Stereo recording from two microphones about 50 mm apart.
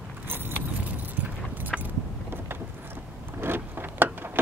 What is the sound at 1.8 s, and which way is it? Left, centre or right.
Vehicle, right.